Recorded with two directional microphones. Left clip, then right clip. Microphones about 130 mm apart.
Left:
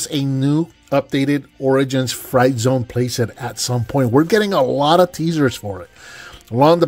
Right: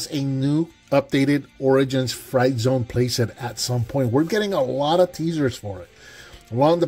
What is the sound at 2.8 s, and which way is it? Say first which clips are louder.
Speech: left 2 dB; 15° left (ahead or behind).